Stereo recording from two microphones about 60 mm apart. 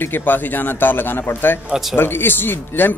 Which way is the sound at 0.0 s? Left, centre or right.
Left.